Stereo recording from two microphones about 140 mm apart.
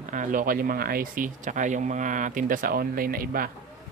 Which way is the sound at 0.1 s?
70° right (ahead or behind).